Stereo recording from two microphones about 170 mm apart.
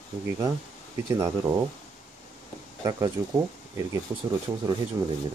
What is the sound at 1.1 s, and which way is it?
Speech, 20° right (ahead or behind).